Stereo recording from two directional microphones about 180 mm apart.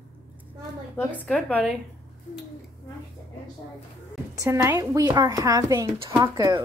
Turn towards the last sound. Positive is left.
turn(degrees=-20)  # may be behind; listen again after turning